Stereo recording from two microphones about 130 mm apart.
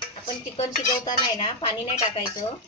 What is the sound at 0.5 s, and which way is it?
Speech, 45° left (ahead or behind).